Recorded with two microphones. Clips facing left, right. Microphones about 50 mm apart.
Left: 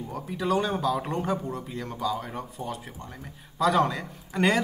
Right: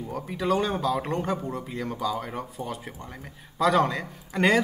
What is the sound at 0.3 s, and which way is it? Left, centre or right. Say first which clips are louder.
A man's voice: right 1 dB; centre.